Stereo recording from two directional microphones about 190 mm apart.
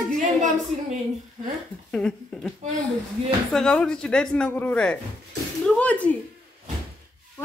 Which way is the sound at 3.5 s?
5° left (ahead or behind).